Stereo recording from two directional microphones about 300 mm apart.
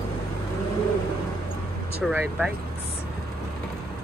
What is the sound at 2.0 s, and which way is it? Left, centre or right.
Speech, centre.